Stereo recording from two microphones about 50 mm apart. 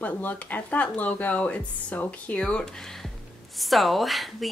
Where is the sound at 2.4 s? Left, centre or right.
Centre.